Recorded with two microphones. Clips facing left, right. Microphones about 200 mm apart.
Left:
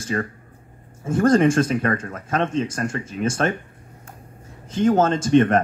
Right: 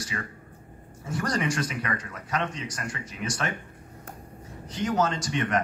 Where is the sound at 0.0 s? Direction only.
45° left (ahead or behind).